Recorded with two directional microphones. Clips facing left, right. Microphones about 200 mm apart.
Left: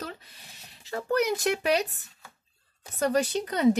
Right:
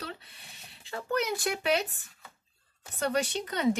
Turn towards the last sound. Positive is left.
turn(degrees=40)  # may be behind; listen again after turning